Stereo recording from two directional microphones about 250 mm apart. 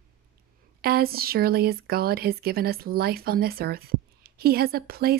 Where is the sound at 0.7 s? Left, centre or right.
Right.